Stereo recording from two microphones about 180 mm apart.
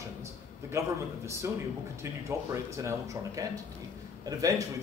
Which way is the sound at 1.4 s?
15° right (ahead or behind).